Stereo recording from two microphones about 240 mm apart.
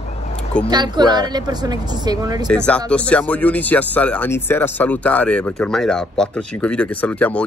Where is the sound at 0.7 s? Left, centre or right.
Centre.